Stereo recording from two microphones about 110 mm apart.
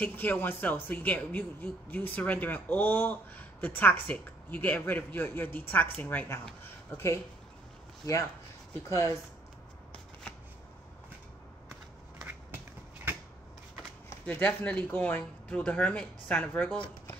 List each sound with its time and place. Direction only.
0.0 s speech: 15° left (ahead or behind)
8.0 s speech: 30° left (ahead or behind)
14.2 s speech: 15° left (ahead or behind)